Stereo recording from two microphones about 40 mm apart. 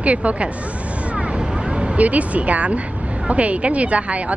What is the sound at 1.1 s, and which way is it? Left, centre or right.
Vehicle, right.